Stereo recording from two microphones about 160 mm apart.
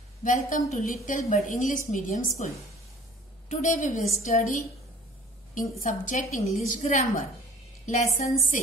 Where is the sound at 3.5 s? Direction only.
50° left (ahead or behind).